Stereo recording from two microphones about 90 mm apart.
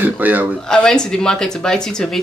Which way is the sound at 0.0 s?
20° right (ahead or behind).